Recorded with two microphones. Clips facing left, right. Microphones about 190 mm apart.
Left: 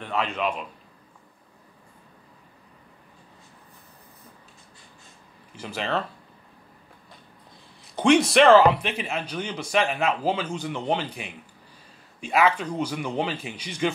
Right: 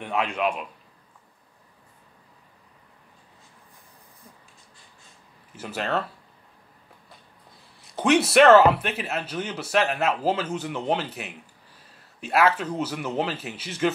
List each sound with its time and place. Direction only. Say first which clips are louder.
0.0 s a man's voice: right 1 dB; 10° right (ahead or behind)
5.5 s a man's voice: right 1 dB; 5° right (ahead or behind)
7.9 s a man's voice: left 1 dB; 5° right (ahead or behind)